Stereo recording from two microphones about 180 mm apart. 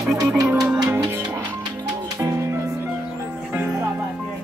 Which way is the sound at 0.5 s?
10° right (ahead or behind).